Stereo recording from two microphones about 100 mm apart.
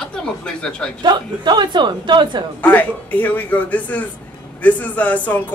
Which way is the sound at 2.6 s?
15° left (ahead or behind).